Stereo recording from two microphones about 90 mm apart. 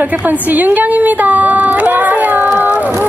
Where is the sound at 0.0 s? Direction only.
15° right (ahead or behind).